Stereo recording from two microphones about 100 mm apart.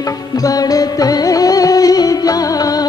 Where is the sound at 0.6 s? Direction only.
35° left (ahead or behind).